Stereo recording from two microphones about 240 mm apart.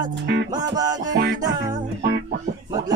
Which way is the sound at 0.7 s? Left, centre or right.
Centre.